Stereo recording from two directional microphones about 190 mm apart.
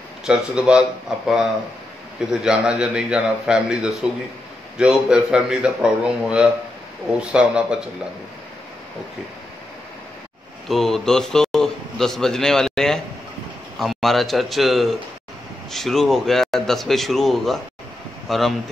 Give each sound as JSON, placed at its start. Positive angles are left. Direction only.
{"t": 0.2, "sound": "a man's voice", "side_deg": -5}
{"t": 10.7, "sound": "a man's voice", "side_deg": 0}